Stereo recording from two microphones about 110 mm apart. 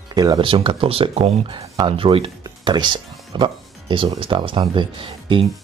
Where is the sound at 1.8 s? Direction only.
55° right (ahead or behind).